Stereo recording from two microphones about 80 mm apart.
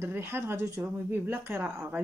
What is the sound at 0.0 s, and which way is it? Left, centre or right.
Speech, right.